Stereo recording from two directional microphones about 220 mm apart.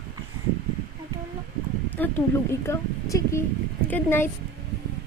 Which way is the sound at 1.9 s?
10° left (ahead or behind).